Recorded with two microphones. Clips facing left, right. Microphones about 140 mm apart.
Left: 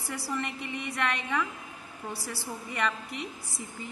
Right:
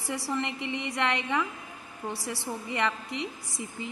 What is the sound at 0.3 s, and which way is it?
A woman's voice, 25° right (ahead or behind).